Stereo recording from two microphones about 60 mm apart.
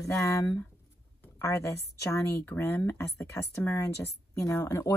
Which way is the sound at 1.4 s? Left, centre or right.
Left.